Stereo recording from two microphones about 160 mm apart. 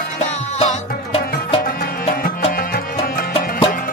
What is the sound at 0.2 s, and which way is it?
Music, 45° left (ahead or behind).